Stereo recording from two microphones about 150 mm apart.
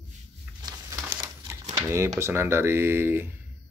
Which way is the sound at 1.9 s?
20° right (ahead or behind).